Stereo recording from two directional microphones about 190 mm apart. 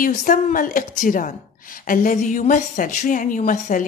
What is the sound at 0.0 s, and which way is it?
A woman's voice, 45° left (ahead or behind).